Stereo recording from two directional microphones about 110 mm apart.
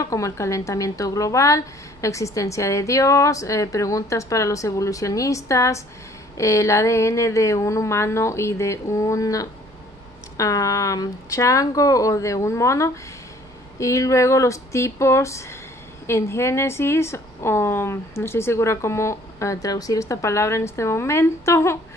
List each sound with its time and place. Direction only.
0.0 s a woman's voice: 30° left (ahead or behind)